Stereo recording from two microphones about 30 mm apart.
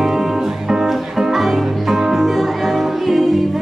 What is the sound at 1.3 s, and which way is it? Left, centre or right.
Music, centre.